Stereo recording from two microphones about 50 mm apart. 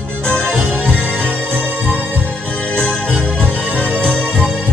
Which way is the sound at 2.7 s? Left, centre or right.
Centre.